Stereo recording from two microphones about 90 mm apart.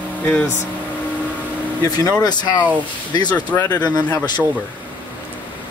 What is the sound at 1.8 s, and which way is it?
Speech, 45° left (ahead or behind).